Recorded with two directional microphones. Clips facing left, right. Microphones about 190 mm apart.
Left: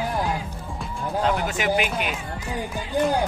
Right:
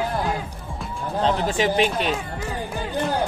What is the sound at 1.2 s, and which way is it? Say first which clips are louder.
Speech: right 3 dB; 30° right (ahead or behind).